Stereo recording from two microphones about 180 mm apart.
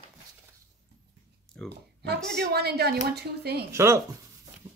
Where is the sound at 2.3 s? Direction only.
65° right (ahead or behind).